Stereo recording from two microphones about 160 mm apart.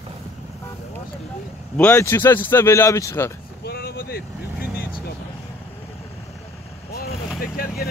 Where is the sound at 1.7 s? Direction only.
15° left (ahead or behind).